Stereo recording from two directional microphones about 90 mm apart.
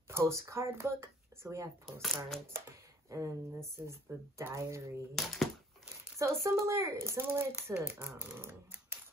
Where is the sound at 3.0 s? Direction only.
35° right (ahead or behind).